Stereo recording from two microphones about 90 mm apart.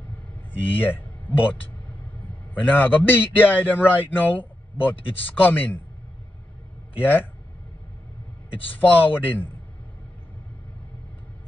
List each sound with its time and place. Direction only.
0.5 s speech: 20° left (ahead or behind)
2.6 s a man's voice: 20° left (ahead or behind)
7.0 s a man's voice: 20° left (ahead or behind)
8.6 s a man's voice: 20° left (ahead or behind)